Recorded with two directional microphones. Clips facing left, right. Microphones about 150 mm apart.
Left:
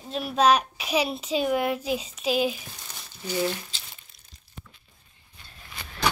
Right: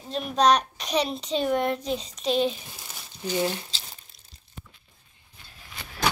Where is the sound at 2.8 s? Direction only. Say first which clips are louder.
Right 3 dB; 10° right (ahead or behind).